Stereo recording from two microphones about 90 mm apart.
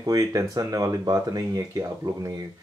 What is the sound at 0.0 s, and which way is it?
Speech, 40° right (ahead or behind).